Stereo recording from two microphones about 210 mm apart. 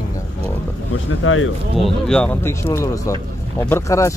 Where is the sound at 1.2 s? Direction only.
75° left (ahead or behind).